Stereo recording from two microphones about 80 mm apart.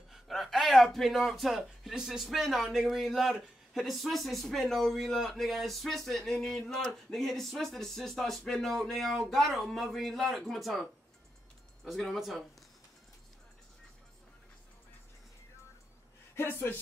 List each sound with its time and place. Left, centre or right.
0.1 s a man's voice: centre
12.0 s a man's voice: centre
16.3 s speech: left